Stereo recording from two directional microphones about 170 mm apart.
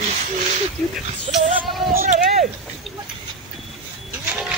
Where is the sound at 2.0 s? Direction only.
45° right (ahead or behind).